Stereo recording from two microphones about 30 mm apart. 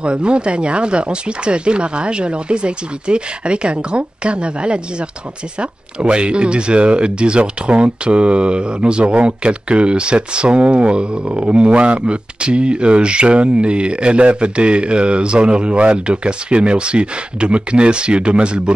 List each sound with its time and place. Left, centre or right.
0.0 s speech: right